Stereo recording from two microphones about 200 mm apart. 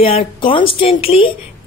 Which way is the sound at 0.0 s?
30° left (ahead or behind).